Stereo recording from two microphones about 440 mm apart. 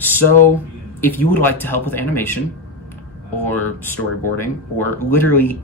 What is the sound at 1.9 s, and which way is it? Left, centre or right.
Speech, left.